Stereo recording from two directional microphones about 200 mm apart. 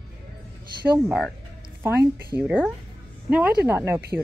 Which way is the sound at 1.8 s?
10° right (ahead or behind).